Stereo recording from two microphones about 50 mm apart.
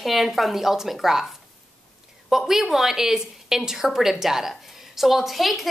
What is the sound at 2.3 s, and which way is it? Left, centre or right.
A woman's voice, centre.